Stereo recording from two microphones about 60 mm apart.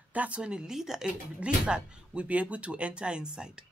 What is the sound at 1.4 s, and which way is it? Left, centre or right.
A woman's voice, centre.